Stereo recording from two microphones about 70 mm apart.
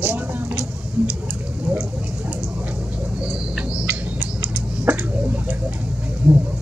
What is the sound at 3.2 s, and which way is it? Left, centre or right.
Bird, centre.